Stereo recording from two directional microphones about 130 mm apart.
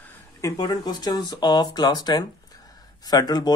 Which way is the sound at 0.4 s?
25° left (ahead or behind).